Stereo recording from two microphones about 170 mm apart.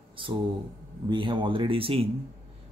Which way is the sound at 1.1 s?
30° right (ahead or behind).